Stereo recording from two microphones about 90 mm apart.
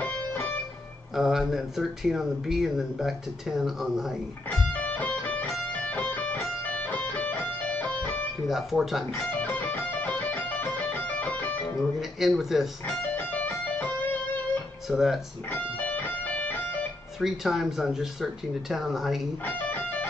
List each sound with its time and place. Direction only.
0.0 s music: 25° left (ahead or behind)
1.1 s speech: 5° right (ahead or behind)
4.5 s music: 20° left (ahead or behind)
8.5 s speech: 5° right (ahead or behind)
9.1 s music: 25° left (ahead or behind)
12.0 s speech: 5° right (ahead or behind)
13.2 s music: 20° left (ahead or behind)
14.9 s speech: 5° right (ahead or behind)
15.5 s music: 20° left (ahead or behind)
17.2 s speech: 5° right (ahead or behind)
19.4 s music: 20° left (ahead or behind)